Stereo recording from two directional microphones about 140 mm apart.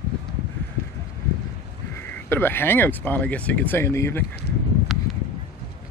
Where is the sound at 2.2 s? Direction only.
15° left (ahead or behind).